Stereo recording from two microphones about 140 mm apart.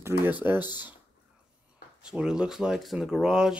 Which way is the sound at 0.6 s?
30° left (ahead or behind).